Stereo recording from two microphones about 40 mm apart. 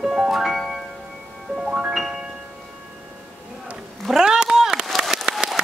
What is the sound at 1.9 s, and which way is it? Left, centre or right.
Music, centre.